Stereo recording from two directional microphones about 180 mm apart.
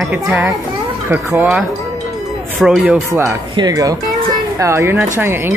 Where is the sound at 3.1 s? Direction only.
15° right (ahead or behind).